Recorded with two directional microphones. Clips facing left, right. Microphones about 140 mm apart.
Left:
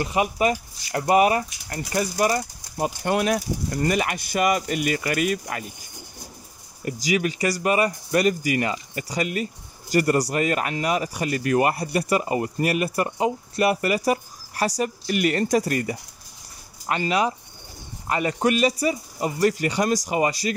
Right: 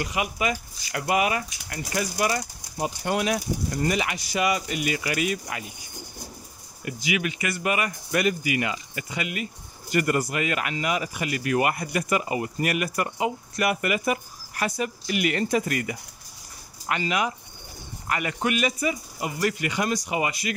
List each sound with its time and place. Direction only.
0.0 s speech: 35° left (ahead or behind)
2.8 s speech: 55° left (ahead or behind)
6.8 s speech: 35° left (ahead or behind)